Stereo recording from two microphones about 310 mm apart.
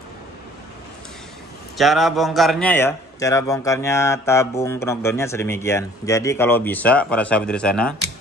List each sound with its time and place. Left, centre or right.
1.8 s a man's voice: centre